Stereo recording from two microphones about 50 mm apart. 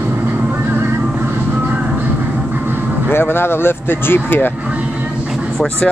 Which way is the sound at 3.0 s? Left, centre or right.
Left.